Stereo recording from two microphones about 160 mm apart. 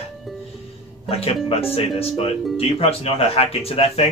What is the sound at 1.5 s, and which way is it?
Speech, 40° left (ahead or behind).